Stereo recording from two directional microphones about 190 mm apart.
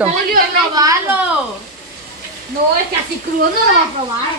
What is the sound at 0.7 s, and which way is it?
Speech, 15° right (ahead or behind).